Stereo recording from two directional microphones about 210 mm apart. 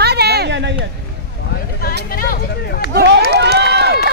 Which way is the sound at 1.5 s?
45° left (ahead or behind).